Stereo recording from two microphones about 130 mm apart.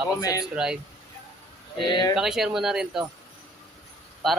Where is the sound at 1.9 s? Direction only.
35° left (ahead or behind).